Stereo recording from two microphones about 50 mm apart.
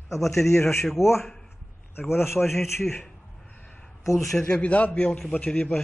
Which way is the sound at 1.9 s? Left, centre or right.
Left.